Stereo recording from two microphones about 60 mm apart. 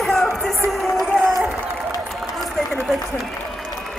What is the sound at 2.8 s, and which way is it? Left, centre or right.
Speech, centre.